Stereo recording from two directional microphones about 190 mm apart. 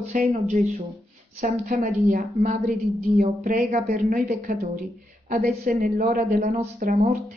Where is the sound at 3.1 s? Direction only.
35° right (ahead or behind).